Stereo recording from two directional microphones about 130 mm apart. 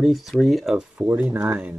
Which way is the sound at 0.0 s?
Centre (ahead or behind).